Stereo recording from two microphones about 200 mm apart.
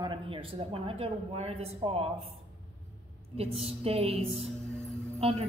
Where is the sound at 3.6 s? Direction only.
30° right (ahead or behind).